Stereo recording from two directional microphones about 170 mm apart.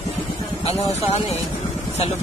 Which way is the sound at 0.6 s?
40° left (ahead or behind).